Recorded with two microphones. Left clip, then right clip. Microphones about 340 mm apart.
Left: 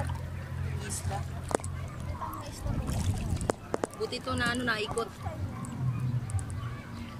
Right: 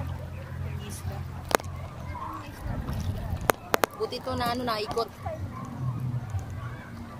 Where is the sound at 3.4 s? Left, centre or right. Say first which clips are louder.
Right 8 dB; right.